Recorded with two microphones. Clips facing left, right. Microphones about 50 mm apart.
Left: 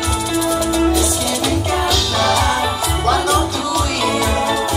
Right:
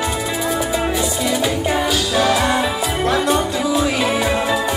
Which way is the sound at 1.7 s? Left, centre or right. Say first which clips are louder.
Even; centre.